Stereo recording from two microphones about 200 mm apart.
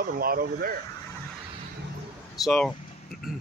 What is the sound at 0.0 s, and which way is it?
Speech, 45° right (ahead or behind).